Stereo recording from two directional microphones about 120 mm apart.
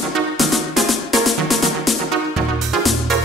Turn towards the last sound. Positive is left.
turn(degrees=0)  # may be behind; listen again after turning